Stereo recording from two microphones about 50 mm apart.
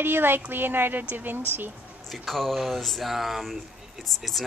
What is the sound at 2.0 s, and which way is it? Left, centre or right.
Speech, centre.